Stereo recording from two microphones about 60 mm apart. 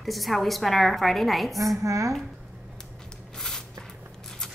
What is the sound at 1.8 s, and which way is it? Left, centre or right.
Speech, right.